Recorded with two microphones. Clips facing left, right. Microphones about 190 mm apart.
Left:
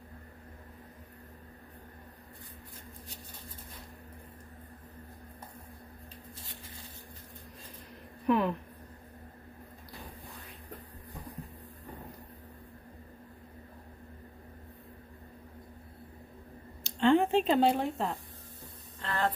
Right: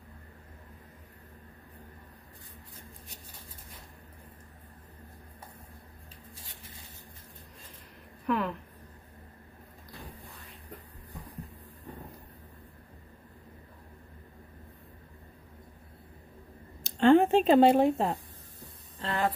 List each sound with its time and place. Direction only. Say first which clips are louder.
8.3 s a woman's voice: left 3 dB; 20° left (ahead or behind)
16.8 s speech: right 4 dB; 45° right (ahead or behind)
18.9 s a sound: right 3 dB; 25° right (ahead or behind)